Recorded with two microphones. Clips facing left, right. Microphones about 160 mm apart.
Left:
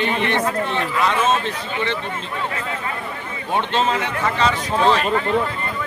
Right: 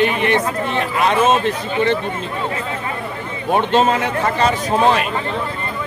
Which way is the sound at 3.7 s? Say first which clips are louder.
Right 5 dB; 45° right (ahead or behind).